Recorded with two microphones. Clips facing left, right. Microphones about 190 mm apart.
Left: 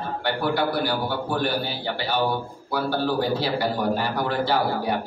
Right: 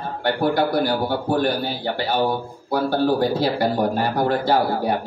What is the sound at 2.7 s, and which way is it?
A man's voice, 45° right (ahead or behind).